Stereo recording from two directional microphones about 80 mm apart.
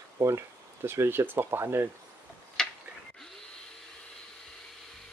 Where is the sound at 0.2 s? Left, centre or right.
Right.